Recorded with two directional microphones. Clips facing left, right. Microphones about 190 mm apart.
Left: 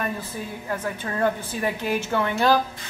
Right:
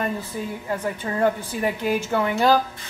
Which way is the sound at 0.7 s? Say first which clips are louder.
Right 1 dB; 20° right (ahead or behind).